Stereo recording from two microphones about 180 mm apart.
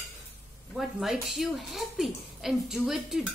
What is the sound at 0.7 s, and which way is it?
Speech, centre (ahead or behind).